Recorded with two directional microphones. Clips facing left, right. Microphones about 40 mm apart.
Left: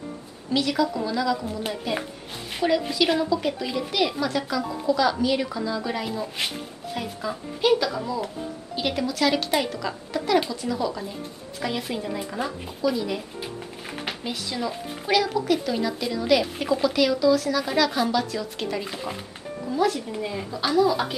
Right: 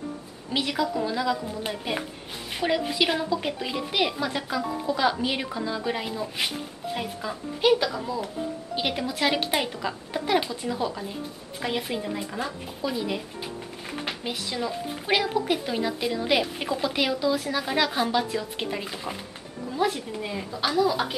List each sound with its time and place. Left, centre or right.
0.5 s speech: right
6.1 s speech: centre
8.7 s speech: centre
11.6 s speech: centre
12.8 s speech: centre
13.8 s a sound: centre
14.2 s speech: centre
15.0 s speech: right
18.9 s speech: centre
19.7 s speech: right
20.2 s speech: centre